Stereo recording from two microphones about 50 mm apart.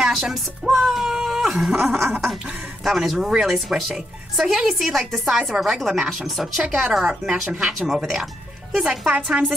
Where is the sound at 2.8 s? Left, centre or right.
Centre.